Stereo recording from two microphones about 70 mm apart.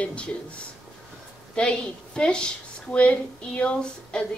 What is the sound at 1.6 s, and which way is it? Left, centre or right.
A woman's voice, centre.